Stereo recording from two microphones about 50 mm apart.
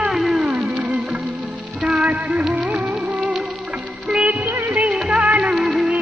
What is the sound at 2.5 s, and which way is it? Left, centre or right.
Music, right.